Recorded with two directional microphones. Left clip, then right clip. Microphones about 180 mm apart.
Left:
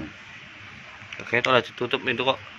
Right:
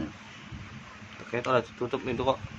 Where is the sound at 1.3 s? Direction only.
20° left (ahead or behind).